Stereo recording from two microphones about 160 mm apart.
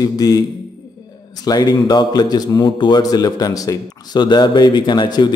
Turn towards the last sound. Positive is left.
turn(degrees=30)  # may be behind; listen again after turning